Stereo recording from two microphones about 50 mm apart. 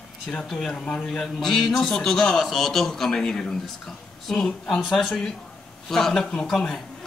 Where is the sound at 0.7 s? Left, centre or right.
Left.